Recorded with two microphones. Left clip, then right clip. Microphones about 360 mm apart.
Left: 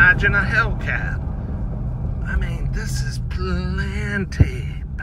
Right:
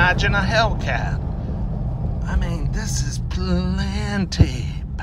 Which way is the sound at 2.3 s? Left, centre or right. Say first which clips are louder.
Left 1 dB; centre.